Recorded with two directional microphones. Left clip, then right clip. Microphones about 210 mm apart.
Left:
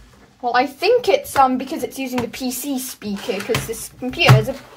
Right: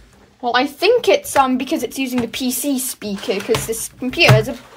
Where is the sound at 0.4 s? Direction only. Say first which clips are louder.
Right 1 dB; 45° right (ahead or behind).